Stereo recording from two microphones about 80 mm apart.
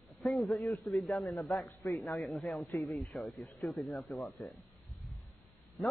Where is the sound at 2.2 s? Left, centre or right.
Centre.